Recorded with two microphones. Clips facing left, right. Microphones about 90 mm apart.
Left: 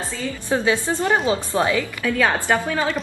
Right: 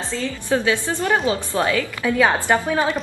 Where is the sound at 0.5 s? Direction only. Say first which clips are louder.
Even; 20° left (ahead or behind).